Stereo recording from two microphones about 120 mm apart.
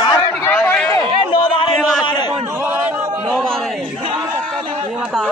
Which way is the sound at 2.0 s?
40° left (ahead or behind).